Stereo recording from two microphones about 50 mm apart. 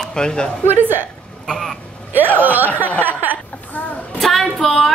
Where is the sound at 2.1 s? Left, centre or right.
Right.